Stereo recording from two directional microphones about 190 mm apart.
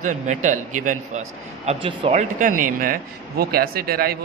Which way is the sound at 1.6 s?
30° right (ahead or behind).